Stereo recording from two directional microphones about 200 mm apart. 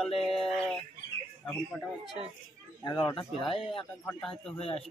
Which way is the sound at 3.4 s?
25° left (ahead or behind).